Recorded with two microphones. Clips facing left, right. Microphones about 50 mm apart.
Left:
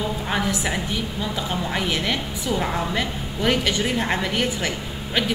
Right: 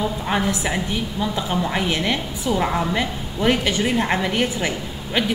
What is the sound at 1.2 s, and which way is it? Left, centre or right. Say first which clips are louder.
A woman's voice: right 6 dB; centre.